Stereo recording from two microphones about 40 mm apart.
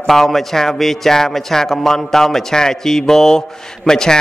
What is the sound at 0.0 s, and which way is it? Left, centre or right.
A man's voice, centre.